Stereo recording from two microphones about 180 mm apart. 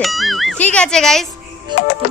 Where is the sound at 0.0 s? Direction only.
Centre (ahead or behind).